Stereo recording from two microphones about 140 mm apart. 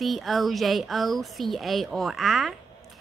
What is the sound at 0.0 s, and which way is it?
Speech, centre (ahead or behind).